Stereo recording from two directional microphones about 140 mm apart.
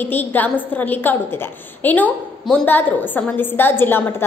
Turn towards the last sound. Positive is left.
turn(degrees=15)  # may be behind; listen again after turning